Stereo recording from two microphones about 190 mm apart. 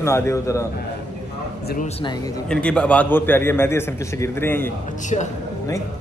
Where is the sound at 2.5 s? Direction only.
5° left (ahead or behind).